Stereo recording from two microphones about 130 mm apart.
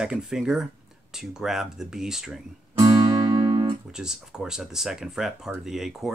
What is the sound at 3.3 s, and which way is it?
Music, 35° right (ahead or behind).